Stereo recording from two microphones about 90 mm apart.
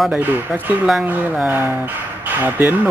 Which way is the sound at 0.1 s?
15° right (ahead or behind).